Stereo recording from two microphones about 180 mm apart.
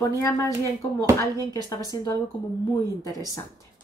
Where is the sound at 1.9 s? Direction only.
15° left (ahead or behind).